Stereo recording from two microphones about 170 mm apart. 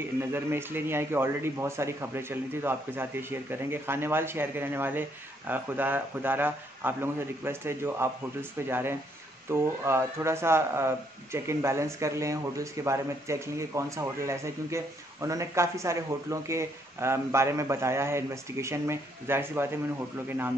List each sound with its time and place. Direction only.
0.3 s speech: 15° right (ahead or behind)